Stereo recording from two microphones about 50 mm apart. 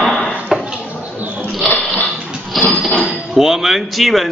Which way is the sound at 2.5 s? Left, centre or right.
Centre.